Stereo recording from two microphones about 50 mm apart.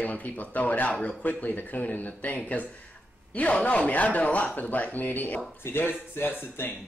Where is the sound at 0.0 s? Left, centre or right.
Left.